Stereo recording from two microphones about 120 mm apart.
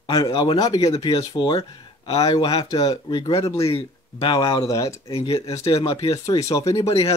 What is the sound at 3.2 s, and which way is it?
Speech, 45° left (ahead or behind).